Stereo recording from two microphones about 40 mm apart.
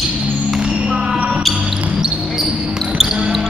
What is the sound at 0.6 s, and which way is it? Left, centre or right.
Music, right.